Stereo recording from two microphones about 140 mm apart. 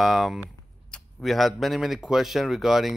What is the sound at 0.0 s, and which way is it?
A man's voice, 5° right (ahead or behind).